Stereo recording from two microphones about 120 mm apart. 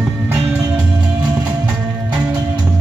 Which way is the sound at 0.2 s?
20° right (ahead or behind).